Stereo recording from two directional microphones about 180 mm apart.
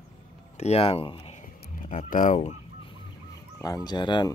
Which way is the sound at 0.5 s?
35° left (ahead or behind).